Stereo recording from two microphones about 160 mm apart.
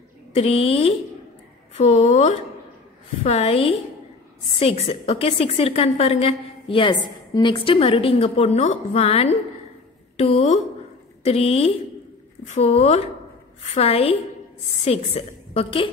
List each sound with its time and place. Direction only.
0.3 s a woman's voice: 40° left (ahead or behind)